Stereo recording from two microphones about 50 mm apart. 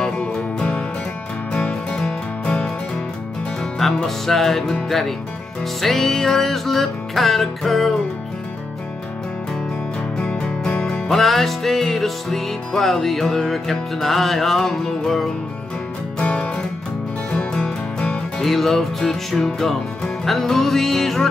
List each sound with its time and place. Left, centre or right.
0.2 s music: left
1.9 s music: centre
3.7 s music: centre
10.1 s music: centre
16.2 s music: left
18.4 s music: centre